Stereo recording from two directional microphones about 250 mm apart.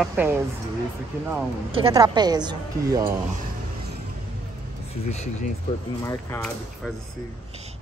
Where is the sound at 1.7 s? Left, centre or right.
Right.